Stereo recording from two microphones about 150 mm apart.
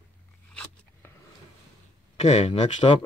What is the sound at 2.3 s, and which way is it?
Speech, 50° left (ahead or behind).